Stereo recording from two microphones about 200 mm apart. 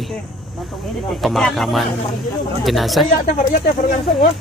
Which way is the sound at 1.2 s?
Centre (ahead or behind).